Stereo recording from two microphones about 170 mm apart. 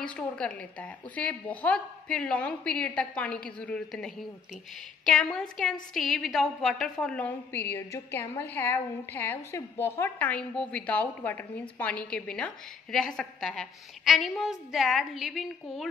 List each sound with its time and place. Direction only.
0.0 s a woman's voice: 5° left (ahead or behind)